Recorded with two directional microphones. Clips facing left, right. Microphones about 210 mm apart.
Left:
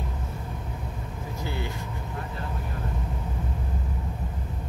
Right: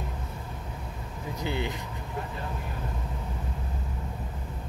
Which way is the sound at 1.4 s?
20° right (ahead or behind).